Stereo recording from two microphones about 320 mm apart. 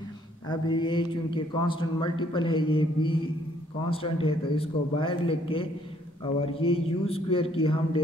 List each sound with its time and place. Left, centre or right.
0.5 s speech: centre